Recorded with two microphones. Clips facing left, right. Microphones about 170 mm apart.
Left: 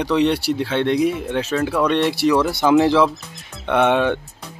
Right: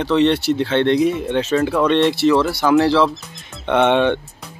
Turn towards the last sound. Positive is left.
turn(degrees=5)  # may be behind; listen again after turning